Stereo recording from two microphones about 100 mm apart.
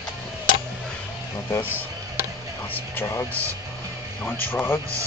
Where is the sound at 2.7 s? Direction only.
25° left (ahead or behind).